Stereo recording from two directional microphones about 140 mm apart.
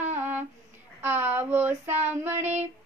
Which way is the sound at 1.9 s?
15° right (ahead or behind).